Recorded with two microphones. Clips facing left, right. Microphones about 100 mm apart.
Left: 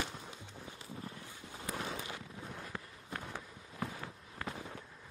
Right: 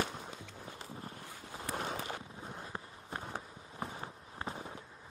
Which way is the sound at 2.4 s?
30° right (ahead or behind).